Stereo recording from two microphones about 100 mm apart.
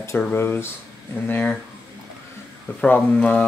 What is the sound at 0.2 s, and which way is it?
Speech, 20° left (ahead or behind).